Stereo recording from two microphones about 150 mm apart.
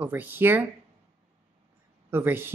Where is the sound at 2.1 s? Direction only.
15° right (ahead or behind).